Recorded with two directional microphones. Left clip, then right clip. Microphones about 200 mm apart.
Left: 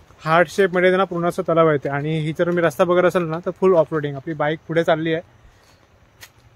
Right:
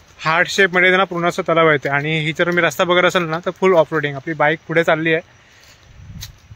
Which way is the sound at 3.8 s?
15° right (ahead or behind).